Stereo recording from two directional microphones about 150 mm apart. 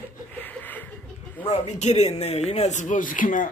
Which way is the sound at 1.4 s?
50° left (ahead or behind).